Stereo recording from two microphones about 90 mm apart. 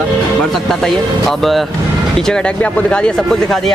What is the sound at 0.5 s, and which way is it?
Speech, 5° left (ahead or behind).